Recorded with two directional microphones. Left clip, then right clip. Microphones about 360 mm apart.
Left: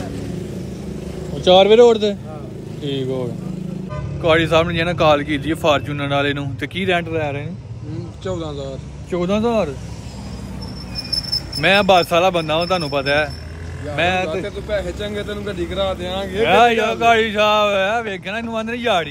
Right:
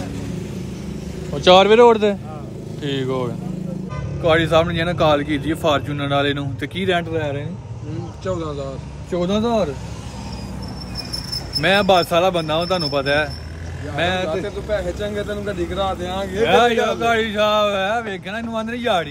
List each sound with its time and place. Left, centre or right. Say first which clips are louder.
1.6 s a man's voice: left 3 dB; right
2.8 s a man's voice: even; centre
4.2 s a man's voice: left 1 dB; centre
11.3 s a man's voice: left 2 dB; centre